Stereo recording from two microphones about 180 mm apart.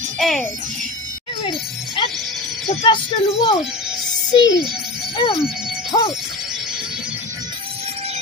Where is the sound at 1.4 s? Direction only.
30° left (ahead or behind).